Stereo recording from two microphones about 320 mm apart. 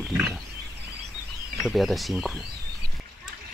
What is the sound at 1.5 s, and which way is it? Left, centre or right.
Speech, centre.